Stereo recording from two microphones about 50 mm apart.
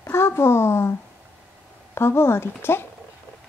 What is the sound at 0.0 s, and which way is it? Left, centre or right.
Speech, left.